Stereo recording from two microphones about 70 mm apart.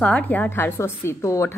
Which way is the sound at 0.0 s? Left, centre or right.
Centre.